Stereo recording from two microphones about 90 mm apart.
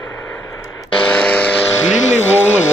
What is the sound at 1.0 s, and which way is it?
Vehicle, 15° left (ahead or behind).